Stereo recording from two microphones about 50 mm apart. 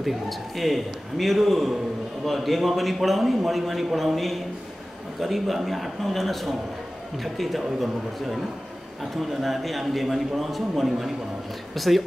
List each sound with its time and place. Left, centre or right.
0.0 s a man's voice: centre